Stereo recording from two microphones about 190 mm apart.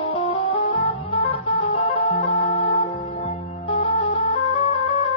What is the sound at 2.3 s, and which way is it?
Music, 30° left (ahead or behind).